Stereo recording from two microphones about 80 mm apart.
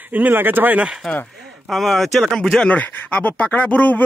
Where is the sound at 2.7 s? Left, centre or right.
Centre.